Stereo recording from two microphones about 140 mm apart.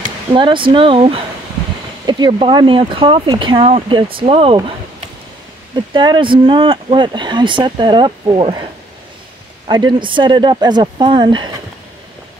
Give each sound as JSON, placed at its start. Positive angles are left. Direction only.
{"t": 0.3, "sound": "speech", "side_deg": -35}
{"t": 2.0, "sound": "speech", "side_deg": -30}
{"t": 5.9, "sound": "speech", "side_deg": -35}
{"t": 9.7, "sound": "speech", "side_deg": -30}